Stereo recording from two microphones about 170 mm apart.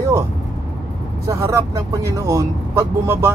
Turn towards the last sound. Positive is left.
turn(degrees=-15)  # may be behind; listen again after turning